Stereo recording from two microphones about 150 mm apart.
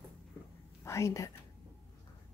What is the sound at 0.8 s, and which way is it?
Speech, 20° left (ahead or behind).